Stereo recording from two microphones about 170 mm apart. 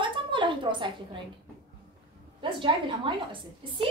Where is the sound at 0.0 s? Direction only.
30° right (ahead or behind).